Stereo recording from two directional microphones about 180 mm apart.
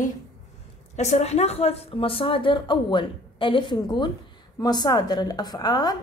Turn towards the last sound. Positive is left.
turn(degrees=25)  # may be behind; listen again after turning